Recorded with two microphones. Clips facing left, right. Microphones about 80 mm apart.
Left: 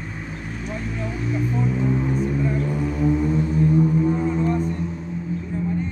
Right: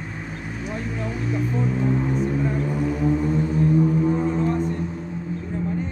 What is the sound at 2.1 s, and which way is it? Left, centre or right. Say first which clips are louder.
Vehicle: even; centre.